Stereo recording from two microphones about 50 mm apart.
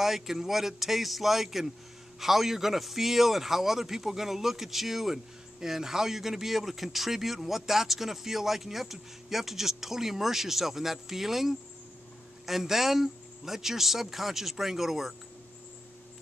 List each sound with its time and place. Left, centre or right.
0.0 s speech: centre